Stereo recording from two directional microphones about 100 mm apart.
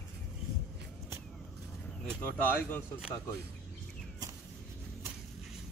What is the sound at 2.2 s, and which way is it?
Speech, 20° left (ahead or behind).